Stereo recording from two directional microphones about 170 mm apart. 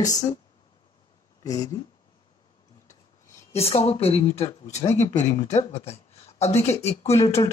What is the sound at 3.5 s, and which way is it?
Speech, 35° left (ahead or behind).